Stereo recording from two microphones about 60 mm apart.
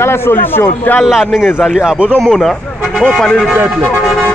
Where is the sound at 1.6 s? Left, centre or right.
Centre.